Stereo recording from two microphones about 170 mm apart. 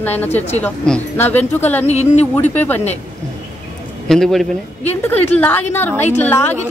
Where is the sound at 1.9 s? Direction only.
40° left (ahead or behind).